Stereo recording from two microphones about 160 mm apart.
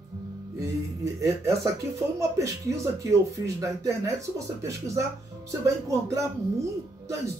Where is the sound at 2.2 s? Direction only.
20° right (ahead or behind).